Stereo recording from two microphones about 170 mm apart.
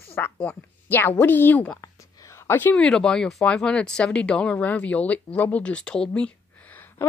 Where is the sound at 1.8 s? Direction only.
20° left (ahead or behind).